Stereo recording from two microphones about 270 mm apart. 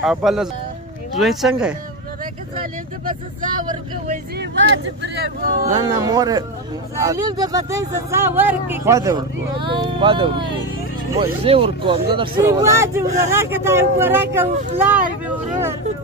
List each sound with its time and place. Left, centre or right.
0.0 s speech: centre
4.1 s speech: right
5.8 s speech: centre